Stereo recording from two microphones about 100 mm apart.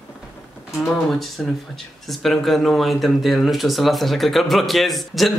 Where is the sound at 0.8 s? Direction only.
Centre (ahead or behind).